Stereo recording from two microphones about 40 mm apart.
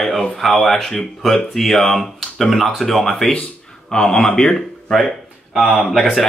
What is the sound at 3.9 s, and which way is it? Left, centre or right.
Speech, centre.